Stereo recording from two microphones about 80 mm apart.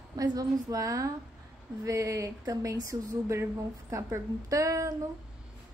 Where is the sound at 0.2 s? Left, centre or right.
Right.